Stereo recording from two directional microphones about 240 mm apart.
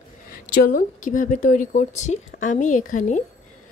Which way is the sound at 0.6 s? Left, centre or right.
Left.